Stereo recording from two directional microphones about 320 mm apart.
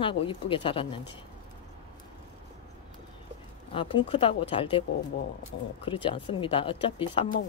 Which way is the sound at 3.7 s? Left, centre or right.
Centre.